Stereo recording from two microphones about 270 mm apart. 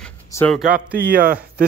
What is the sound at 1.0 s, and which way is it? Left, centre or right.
Speech, right.